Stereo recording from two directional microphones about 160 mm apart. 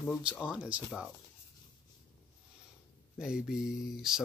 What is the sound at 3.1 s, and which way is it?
Speech, 5° right (ahead or behind).